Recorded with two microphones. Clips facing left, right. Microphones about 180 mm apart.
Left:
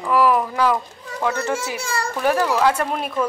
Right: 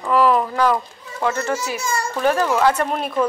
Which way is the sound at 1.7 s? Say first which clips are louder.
Right 1 dB; 30° left (ahead or behind).